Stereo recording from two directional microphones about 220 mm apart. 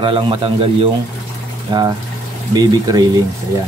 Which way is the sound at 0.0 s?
25° right (ahead or behind).